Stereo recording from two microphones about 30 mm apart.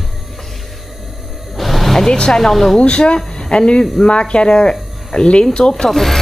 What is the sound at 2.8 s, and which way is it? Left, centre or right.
A woman's voice, left.